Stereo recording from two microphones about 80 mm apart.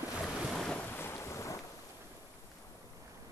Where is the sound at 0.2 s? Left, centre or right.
Centre.